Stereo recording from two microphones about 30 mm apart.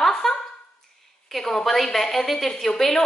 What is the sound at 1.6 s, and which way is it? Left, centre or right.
A woman's voice, centre.